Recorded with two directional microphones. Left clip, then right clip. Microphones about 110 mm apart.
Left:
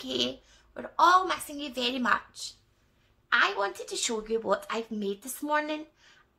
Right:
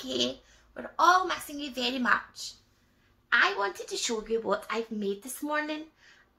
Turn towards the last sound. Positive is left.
turn(degrees=40)  # may be behind; listen again after turning